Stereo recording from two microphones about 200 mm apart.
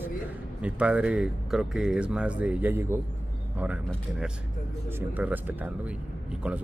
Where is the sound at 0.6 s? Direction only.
5° right (ahead or behind).